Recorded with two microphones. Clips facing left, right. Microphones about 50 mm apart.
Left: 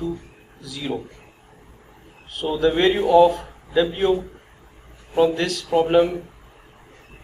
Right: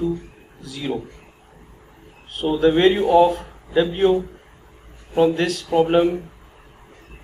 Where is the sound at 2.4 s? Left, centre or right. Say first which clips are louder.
Right 3 dB; centre.